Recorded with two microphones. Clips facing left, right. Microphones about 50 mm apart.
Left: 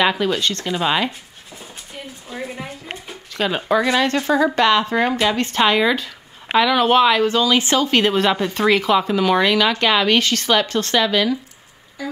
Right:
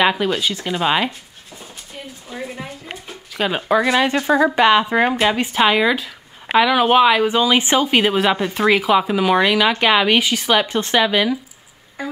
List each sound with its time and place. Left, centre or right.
0.0 s speech: centre
2.2 s a woman's voice: centre
3.3 s speech: centre
12.0 s music: right